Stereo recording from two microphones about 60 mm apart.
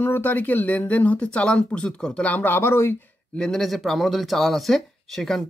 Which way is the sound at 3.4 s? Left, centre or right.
Centre.